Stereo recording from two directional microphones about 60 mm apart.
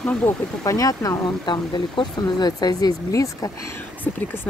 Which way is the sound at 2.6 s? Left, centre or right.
Left.